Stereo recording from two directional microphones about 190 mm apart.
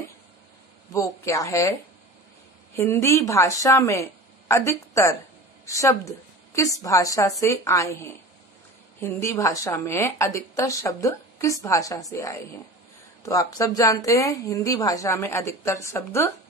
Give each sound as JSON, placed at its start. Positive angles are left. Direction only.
{"t": 0.9, "sound": "a woman's voice", "side_deg": 15}